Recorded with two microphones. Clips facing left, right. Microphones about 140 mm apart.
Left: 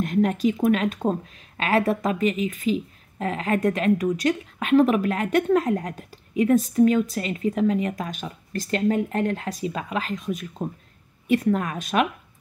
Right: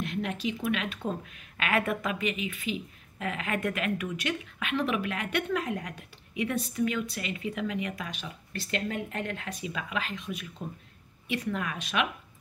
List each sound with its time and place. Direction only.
0.0 s speech: 45° left (ahead or behind)